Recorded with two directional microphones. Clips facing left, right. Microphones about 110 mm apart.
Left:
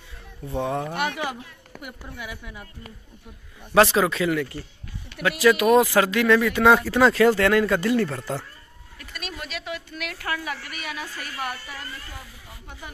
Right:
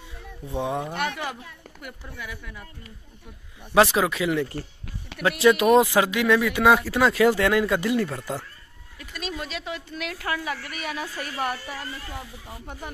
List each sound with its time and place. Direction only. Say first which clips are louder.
0.5 s speech: left 1 dB; 15° right (ahead or behind)
0.9 s speech: left 2 dB; 10° left (ahead or behind)
3.7 s speech: left 1 dB; 10° right (ahead or behind)
4.4 s a woman's voice: right 1 dB; 35° right (ahead or behind)
5.8 s speech: left 1 dB; 15° right (ahead or behind)
9.1 s speech: right 3 dB; 25° right (ahead or behind)
10.7 s a woman's voice: right 2 dB; centre (ahead or behind)
11.1 s a woman's voice: right 3 dB; 30° right (ahead or behind)